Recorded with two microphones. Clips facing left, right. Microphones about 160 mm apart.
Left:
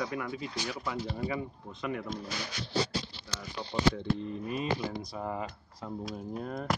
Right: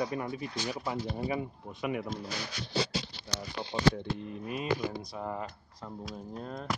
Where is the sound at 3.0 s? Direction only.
70° right (ahead or behind).